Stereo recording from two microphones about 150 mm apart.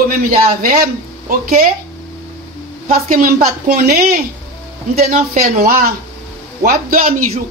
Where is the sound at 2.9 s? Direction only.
70° right (ahead or behind).